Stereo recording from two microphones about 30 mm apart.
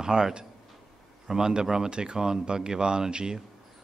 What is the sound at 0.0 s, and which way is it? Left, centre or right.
A man's voice, right.